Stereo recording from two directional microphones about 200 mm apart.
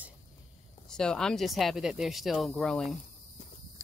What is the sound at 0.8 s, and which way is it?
Speech, 5° left (ahead or behind).